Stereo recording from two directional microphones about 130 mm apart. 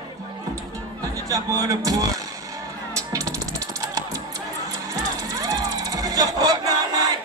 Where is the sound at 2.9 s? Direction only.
25° right (ahead or behind).